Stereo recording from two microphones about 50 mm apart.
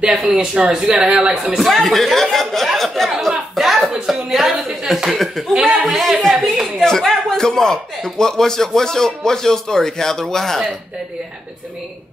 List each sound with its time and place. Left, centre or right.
0.3 s speech: centre
1.6 s speech: centre
3.2 s chuckle: centre
4.0 s speech: centre
5.5 s speech: centre
5.9 s speech: centre
6.8 s speech: centre